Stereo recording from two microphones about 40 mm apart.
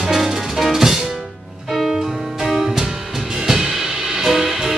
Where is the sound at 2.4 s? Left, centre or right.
Centre.